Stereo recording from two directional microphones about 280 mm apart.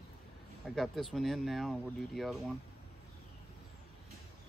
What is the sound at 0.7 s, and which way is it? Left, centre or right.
Speech, centre.